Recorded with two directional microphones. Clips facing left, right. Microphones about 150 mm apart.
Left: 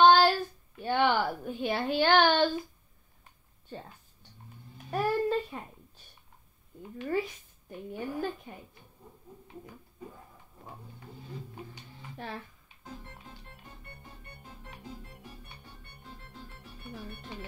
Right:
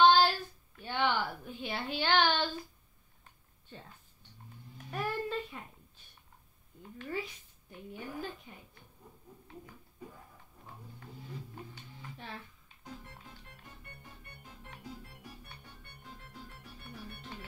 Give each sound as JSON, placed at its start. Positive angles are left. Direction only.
{"t": 0.0, "sound": "child singing", "side_deg": 50}
{"t": 0.8, "sound": "a sound", "side_deg": 55}
{"t": 4.9, "sound": "a sound", "side_deg": 40}
{"t": 7.1, "sound": "a woman's voice", "side_deg": 50}
{"t": 12.2, "sound": "speech", "side_deg": 55}
{"t": 16.9, "sound": "music", "side_deg": 65}